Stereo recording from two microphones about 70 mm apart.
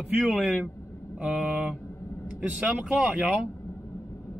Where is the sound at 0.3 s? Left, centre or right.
Centre.